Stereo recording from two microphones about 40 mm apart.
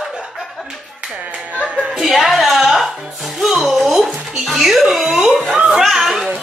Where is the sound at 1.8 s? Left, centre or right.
Centre.